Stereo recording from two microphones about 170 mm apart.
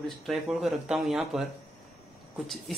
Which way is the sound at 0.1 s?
Centre (ahead or behind).